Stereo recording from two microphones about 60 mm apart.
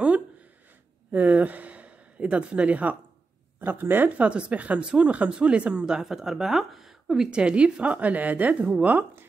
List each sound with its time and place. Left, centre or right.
1.1 s speech: right
4.2 s speech: right